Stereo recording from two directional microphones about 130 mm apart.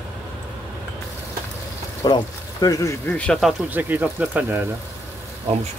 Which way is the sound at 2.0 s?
30° left (ahead or behind).